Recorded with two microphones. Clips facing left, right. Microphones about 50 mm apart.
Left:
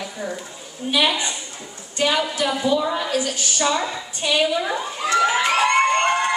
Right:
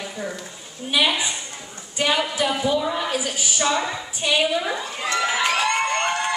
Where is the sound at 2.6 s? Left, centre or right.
Centre.